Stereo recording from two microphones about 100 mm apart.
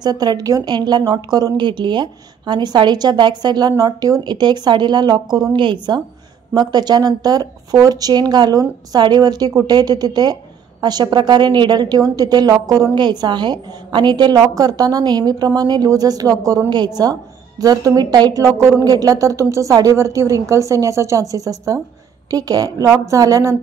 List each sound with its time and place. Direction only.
0.0 s a woman's voice: 40° right (ahead or behind); by 18.9 s 25° right (ahead or behind)
18.9 s a woman's voice: 35° right (ahead or behind)